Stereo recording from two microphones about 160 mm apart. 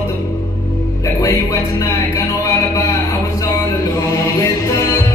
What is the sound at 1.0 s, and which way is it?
Music, 20° left (ahead or behind).